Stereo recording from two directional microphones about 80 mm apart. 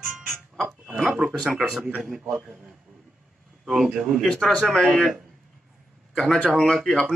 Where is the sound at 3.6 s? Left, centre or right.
Centre.